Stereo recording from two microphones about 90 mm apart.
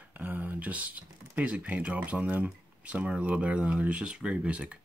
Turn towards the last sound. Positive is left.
turn(degrees=-15)  # may be behind; listen again after turning